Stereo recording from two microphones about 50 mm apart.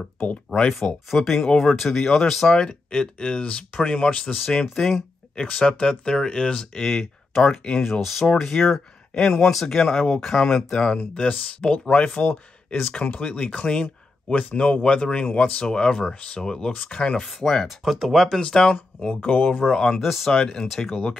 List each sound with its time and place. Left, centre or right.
0.5 s speech: centre
2.5 s speech: centre
4.7 s speech: centre
5.3 s speech: centre
6.8 s speech: centre
11.9 s speech: left
16.7 s speech: left
17.2 s speech: centre
18.4 s speech: centre
19.6 s speech: centre
20.0 s speech: centre
20.3 s speech: centre